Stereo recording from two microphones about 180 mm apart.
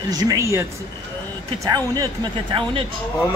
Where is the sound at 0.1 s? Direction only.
20° right (ahead or behind).